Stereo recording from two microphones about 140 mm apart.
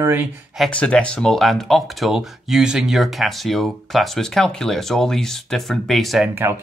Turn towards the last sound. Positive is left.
turn(degrees=0)  # may be behind; listen again after turning